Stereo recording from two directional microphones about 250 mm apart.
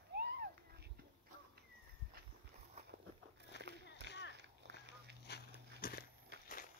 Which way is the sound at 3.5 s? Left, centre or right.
Left.